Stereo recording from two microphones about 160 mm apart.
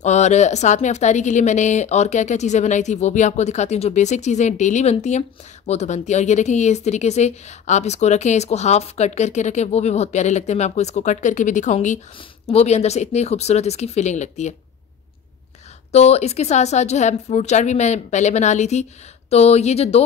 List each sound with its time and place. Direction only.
0.0 s speech: 45° left (ahead or behind)
15.9 s speech: 40° left (ahead or behind)